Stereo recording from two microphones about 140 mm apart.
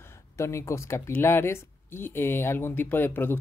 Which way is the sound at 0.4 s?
20° left (ahead or behind).